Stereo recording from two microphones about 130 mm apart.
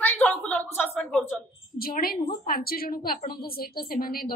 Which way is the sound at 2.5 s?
90° left.